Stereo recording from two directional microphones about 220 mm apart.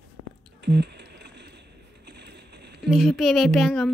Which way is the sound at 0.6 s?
50° right (ahead or behind).